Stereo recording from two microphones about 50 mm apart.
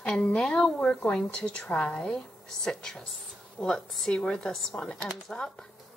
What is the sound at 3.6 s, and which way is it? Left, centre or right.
Speech, left.